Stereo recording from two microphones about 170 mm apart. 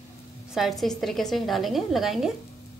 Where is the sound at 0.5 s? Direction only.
Centre (ahead or behind).